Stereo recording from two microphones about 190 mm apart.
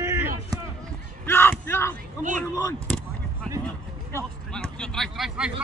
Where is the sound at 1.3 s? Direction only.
10° left (ahead or behind).